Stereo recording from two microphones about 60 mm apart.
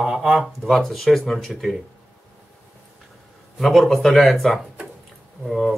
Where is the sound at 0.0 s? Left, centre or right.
Centre.